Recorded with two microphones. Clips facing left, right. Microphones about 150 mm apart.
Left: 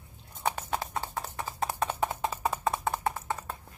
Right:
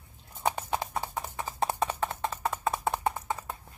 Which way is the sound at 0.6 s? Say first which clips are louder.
Right 1 dB; 15° right (ahead or behind).